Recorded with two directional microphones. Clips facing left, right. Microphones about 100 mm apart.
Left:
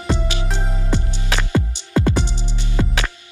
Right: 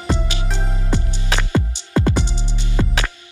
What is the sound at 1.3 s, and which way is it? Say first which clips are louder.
Music: even; 20° right (ahead or behind).